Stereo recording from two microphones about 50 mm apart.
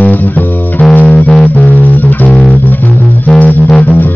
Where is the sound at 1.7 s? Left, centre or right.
Left.